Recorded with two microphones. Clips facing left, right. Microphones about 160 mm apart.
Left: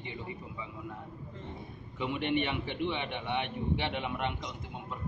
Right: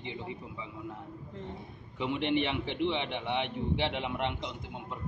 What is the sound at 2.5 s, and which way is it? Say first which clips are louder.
A man's voice: right 2 dB; 20° right (ahead or behind).